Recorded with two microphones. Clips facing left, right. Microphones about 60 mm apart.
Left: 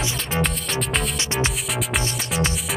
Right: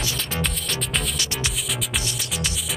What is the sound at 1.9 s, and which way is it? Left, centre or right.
Music, left.